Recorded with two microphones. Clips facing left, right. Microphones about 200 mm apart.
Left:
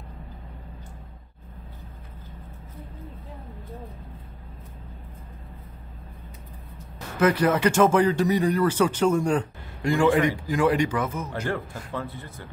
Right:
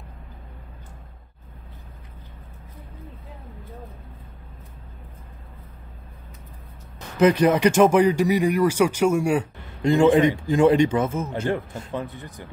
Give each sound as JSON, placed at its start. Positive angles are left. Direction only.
{"t": 7.2, "sound": "speech", "side_deg": -20}
{"t": 9.8, "sound": "a man's voice", "side_deg": -20}